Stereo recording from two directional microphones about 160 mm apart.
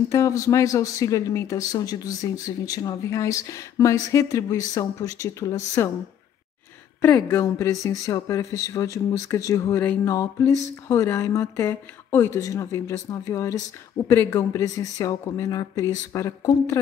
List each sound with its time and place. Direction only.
0.1 s speech: 20° left (ahead or behind)
7.0 s speech: 15° left (ahead or behind)